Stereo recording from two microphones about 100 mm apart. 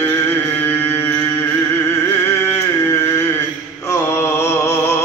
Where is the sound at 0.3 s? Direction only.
20° left (ahead or behind).